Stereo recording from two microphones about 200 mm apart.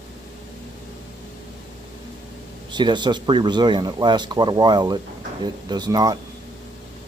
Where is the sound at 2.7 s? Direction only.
20° right (ahead or behind).